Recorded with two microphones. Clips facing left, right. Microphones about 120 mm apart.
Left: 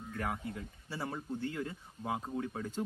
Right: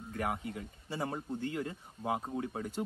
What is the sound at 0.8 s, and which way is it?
Speech, 15° right (ahead or behind).